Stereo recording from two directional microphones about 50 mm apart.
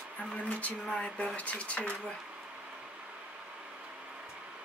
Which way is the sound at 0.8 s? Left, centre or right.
Left.